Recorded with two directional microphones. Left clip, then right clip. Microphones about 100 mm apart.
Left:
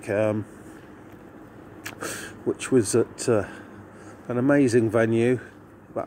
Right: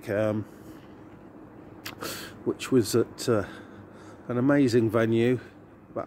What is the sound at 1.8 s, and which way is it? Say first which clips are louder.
Speech: left 3 dB; 20° right (ahead or behind).